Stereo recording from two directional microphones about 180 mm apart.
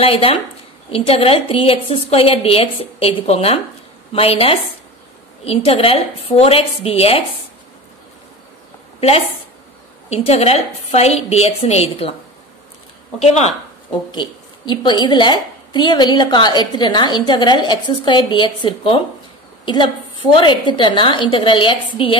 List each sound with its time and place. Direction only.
0.0 s a woman's voice: 30° left (ahead or behind)
10.0 s a woman's voice: 35° left (ahead or behind)
14.1 s a woman's voice: 25° left (ahead or behind)